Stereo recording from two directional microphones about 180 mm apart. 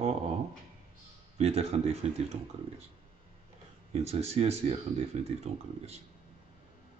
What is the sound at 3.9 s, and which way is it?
Speech, 35° right (ahead or behind).